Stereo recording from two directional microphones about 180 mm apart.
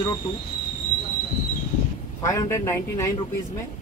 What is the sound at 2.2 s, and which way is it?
Speech, 15° left (ahead or behind).